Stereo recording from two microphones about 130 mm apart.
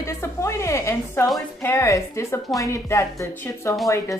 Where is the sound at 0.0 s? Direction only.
20° left (ahead or behind).